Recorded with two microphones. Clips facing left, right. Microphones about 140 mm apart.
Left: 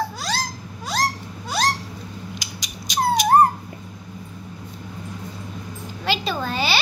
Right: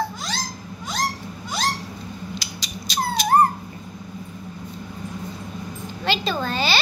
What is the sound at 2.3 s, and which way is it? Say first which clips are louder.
Cat: right 2 dB; 15° left (ahead or behind).